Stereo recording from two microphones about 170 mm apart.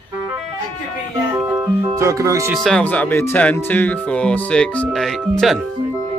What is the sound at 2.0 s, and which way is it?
Speech, 20° right (ahead or behind).